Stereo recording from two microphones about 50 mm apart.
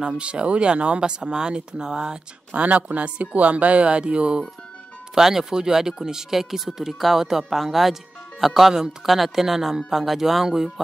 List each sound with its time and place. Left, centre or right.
0.0 s speech: centre
2.6 s speech: right
5.1 s speech: centre